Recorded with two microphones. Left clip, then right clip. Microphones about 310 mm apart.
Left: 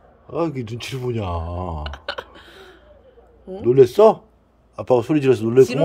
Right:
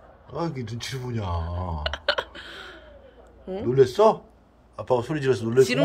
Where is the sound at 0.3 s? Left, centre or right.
Left.